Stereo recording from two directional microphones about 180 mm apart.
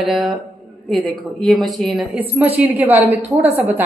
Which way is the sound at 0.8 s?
Centre (ahead or behind).